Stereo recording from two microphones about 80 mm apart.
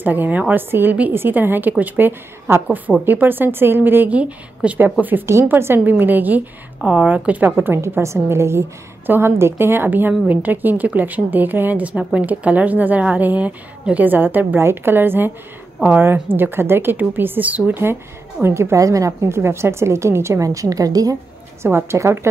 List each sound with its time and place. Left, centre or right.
0.0 s a woman's voice: right
18.4 s a woman's voice: right
21.6 s a woman's voice: right